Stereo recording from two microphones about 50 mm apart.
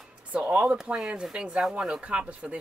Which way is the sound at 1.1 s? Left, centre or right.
Centre.